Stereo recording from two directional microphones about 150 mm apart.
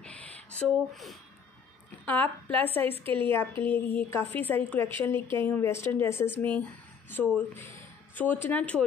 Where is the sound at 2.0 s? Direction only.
10° left (ahead or behind).